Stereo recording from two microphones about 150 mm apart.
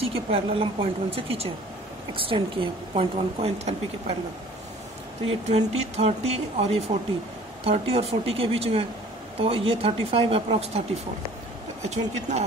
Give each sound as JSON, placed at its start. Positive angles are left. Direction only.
{"t": 0.0, "sound": "a woman's voice", "side_deg": -40}
{"t": 5.5, "sound": "a woman's voice", "side_deg": -45}
{"t": 11.9, "sound": "speech", "side_deg": -50}